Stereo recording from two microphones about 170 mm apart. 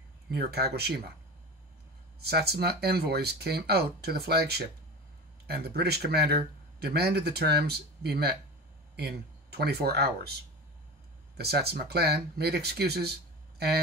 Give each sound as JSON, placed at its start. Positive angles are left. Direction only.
{"t": 0.3, "sound": "speech", "side_deg": -70}
{"t": 2.1, "sound": "speech", "side_deg": -70}
{"t": 11.3, "sound": "speech", "side_deg": -70}